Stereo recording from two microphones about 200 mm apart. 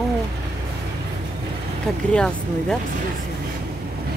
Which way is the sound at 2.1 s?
5° left (ahead or behind).